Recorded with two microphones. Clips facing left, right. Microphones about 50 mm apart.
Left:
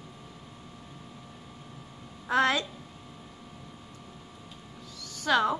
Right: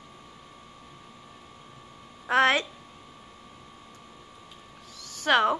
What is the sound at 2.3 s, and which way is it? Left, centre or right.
Speech, right.